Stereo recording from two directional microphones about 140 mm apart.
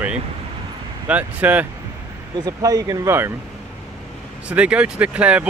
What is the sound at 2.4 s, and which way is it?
Speech, 25° right (ahead or behind).